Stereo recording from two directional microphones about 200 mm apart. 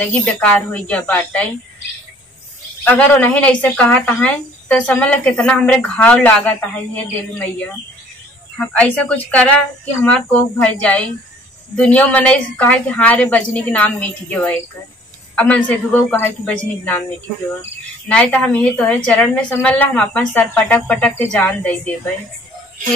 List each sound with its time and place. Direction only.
0.1 s speech: 5° left (ahead or behind)
2.9 s speech: 5° left (ahead or behind)